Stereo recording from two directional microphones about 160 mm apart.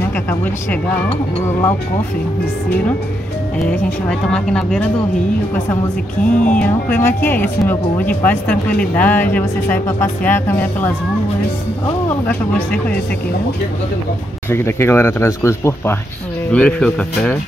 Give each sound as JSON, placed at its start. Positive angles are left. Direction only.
{"t": 0.1, "sound": "speech", "side_deg": 10}
{"t": 3.5, "sound": "speech", "side_deg": 5}
{"t": 6.3, "sound": "speech", "side_deg": 10}
{"t": 14.5, "sound": "speech", "side_deg": 15}